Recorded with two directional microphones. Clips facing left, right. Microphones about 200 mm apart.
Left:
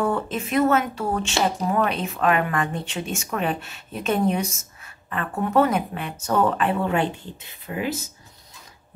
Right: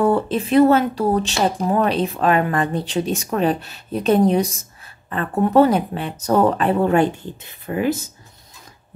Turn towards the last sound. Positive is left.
turn(degrees=-50)  # may be behind; listen again after turning